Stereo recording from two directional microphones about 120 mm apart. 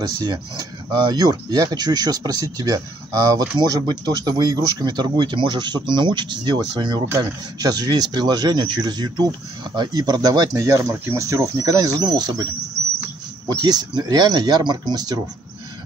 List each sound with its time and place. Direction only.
0.0 s speech: 35° right (ahead or behind)
13.5 s speech: 35° right (ahead or behind)